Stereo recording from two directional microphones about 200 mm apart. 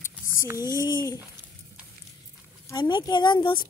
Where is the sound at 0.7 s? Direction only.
20° left (ahead or behind).